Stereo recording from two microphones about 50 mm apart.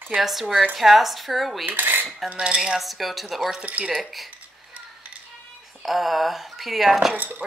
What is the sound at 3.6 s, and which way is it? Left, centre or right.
Speech, right.